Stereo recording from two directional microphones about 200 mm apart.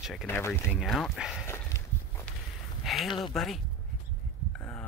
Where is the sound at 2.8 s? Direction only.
Centre (ahead or behind).